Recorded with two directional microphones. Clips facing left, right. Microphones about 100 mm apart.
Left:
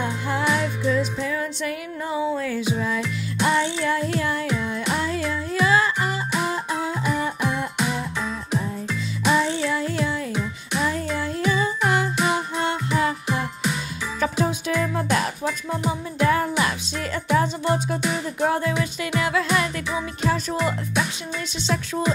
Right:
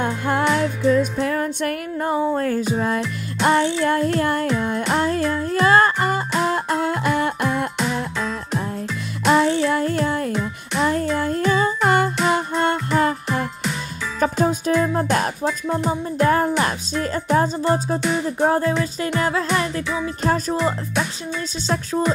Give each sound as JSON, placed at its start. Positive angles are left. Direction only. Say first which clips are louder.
{"t": 0.0, "sound": "music", "louder": "right 4 dB", "side_deg": -55}
{"t": 3.4, "sound": "child singing", "louder": "right 4 dB", "side_deg": -45}
{"t": 9.2, "sound": "music", "louder": "right 5 dB", "side_deg": -55}
{"t": 15.0, "sound": "speech", "louder": "right 2 dB", "side_deg": -45}
{"t": 15.9, "sound": "music", "louder": "right 2 dB", "side_deg": -45}